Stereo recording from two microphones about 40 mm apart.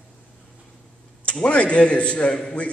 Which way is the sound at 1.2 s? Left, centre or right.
Left.